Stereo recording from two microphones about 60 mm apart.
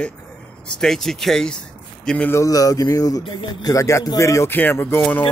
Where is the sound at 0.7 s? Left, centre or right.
Centre.